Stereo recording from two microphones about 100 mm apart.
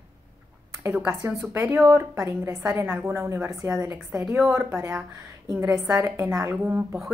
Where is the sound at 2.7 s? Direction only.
25° right (ahead or behind).